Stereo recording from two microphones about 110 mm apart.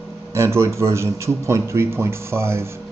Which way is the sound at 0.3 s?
25° right (ahead or behind).